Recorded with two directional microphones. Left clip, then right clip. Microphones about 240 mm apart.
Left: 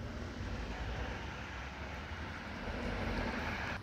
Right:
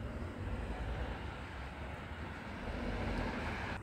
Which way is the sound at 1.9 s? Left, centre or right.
Centre.